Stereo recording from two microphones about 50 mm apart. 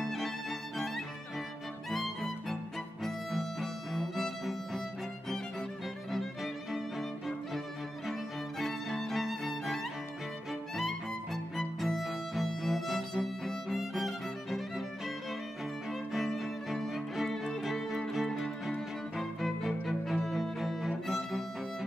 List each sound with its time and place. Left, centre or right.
0.0 s music: centre
2.5 s music: centre
6.1 s violin: centre
8.1 s music: centre
11.5 s music: centre
15.9 s violin: centre
17.2 s music: centre